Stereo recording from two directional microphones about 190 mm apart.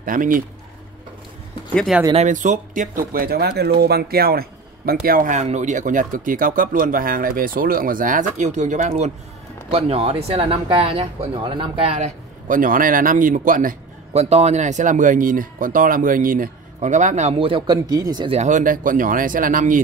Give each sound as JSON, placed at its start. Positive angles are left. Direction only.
{"t": 0.0, "sound": "a man's voice", "side_deg": -45}
{"t": 1.8, "sound": "speech", "side_deg": 0}
{"t": 2.1, "sound": "a man's voice", "side_deg": -40}
{"t": 14.1, "sound": "speech", "side_deg": -35}